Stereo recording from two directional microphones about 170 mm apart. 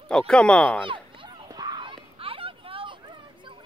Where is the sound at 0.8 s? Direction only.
30° right (ahead or behind).